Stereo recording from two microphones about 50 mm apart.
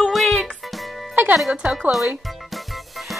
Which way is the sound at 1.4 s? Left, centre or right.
Centre.